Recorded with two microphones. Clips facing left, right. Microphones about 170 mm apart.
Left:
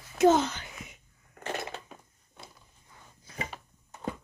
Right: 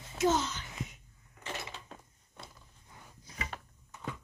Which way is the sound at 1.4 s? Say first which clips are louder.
Left 7 dB; 50° left (ahead or behind).